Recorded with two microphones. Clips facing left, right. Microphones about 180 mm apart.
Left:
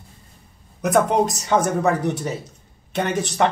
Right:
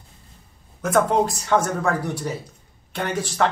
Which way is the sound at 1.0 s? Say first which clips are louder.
Left 1 dB; 20° left (ahead or behind).